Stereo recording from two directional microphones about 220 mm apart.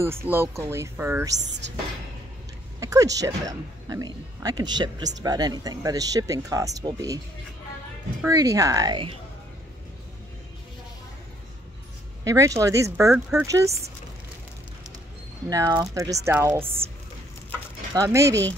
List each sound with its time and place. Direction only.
0.0 s speech: 10° right (ahead or behind)
1.3 s speech: 50° right (ahead or behind)
2.8 s speech: 15° right (ahead or behind)
8.2 s speech: 15° right (ahead or behind)
12.3 s speech: 15° right (ahead or behind)
15.5 s speech: 15° right (ahead or behind)
17.5 s a sound: 15° right (ahead or behind)